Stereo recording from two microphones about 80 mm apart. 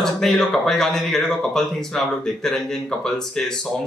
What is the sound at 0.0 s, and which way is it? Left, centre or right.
Speech, centre.